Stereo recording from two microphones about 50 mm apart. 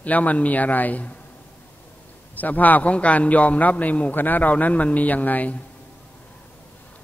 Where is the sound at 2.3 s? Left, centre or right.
Left.